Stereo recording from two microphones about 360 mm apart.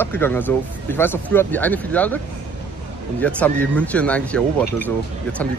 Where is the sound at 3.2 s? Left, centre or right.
Centre.